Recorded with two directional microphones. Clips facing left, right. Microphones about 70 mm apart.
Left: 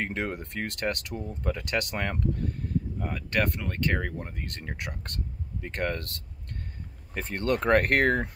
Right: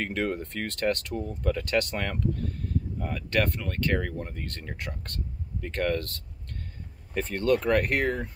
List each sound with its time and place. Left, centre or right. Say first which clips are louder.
0.0 s speech: right 2 dB; left
3.0 s speech: even; centre
3.4 s speech: even; left
7.3 s speech: right 2 dB; left
7.7 s speech: left 3 dB; left